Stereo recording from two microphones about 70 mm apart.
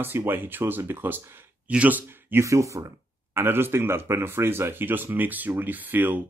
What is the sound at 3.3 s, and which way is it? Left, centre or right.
Speech, right.